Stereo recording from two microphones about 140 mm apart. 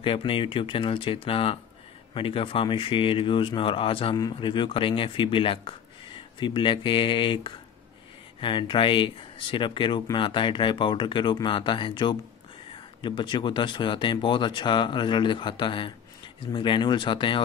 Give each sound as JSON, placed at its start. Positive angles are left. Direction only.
{"t": 0.0, "sound": "speech", "side_deg": 40}